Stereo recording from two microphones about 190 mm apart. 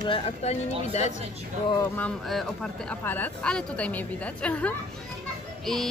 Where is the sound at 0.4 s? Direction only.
35° left (ahead or behind).